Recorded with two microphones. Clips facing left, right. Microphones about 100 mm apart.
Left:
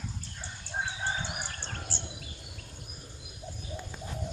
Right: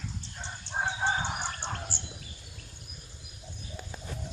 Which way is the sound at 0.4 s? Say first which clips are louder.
Right 3 dB; 65° right (ahead or behind).